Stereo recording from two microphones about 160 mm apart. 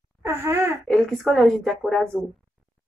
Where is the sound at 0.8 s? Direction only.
Centre (ahead or behind).